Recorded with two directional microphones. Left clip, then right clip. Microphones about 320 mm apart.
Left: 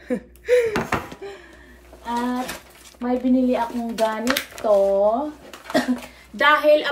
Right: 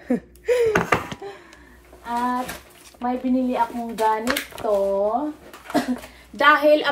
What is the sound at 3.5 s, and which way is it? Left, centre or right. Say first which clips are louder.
Speech: even; centre.